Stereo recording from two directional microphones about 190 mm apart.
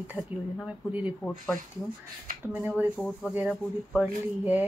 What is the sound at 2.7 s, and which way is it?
Speech, 5° left (ahead or behind).